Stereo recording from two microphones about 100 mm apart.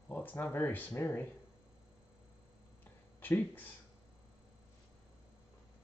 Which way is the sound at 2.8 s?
20° left (ahead or behind).